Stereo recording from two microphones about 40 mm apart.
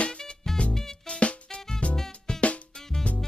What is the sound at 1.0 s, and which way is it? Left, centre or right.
Music, left.